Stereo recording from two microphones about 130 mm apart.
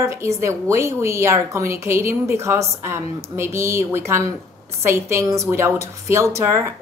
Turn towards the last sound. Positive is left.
turn(degrees=-20)  # may be behind; listen again after turning